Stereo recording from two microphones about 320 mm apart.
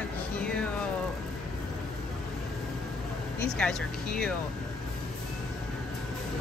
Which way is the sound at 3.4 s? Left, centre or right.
Centre.